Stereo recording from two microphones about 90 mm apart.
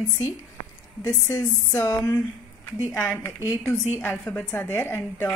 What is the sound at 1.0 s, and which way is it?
Speech, 35° left (ahead or behind).